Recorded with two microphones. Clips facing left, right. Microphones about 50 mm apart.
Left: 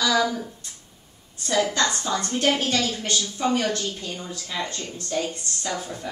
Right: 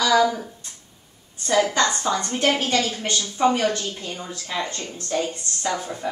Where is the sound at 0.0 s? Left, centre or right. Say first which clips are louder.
Right 4 dB; centre.